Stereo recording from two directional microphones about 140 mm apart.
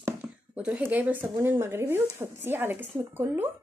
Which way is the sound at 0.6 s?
10° right (ahead or behind).